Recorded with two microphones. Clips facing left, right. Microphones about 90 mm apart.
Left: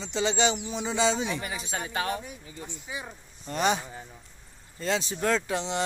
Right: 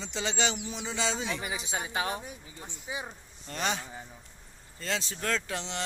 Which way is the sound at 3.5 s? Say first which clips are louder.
Left 6 dB; 10° left (ahead or behind).